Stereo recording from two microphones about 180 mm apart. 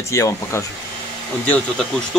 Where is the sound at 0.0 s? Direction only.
15° left (ahead or behind).